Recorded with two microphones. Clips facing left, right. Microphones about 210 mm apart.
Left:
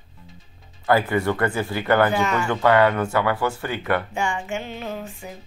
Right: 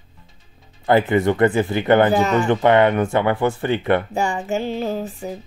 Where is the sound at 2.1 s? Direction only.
35° right (ahead or behind).